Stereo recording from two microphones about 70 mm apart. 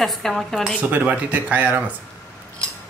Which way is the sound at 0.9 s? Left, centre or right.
Right.